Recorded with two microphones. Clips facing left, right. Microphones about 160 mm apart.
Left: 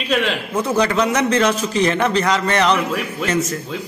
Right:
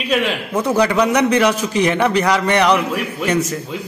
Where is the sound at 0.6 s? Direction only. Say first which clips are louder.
Right 2 dB; 15° right (ahead or behind).